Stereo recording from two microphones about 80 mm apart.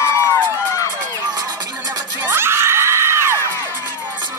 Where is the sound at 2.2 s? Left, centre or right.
Right.